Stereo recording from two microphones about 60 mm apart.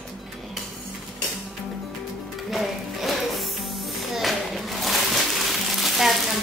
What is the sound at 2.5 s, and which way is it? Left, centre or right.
Music, centre.